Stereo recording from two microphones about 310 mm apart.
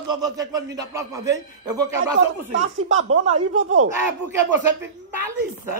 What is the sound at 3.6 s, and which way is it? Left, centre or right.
Speech, right.